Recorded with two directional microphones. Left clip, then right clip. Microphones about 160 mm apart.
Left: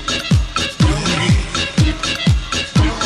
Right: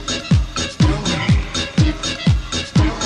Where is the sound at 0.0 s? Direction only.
25° right (ahead or behind).